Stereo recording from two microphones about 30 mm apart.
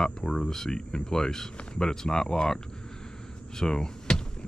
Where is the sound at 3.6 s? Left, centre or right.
Left.